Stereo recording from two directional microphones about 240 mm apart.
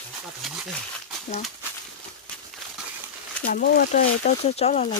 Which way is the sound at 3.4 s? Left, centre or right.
Left.